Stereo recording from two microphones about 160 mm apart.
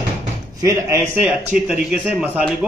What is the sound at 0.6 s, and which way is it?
Speech, 20° right (ahead or behind).